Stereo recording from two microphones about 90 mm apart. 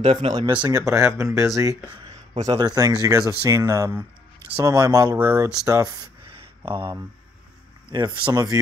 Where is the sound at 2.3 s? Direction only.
50° right (ahead or behind).